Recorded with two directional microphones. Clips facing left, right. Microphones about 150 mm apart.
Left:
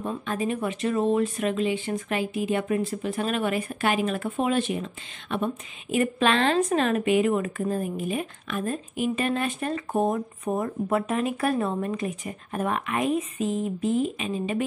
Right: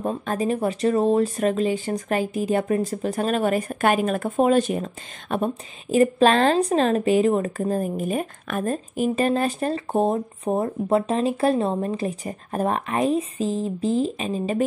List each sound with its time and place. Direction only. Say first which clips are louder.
0.0 s speech: right 4 dB; 40° right (ahead or behind)